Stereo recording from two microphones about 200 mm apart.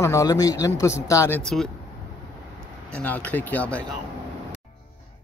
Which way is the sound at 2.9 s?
10° left (ahead or behind).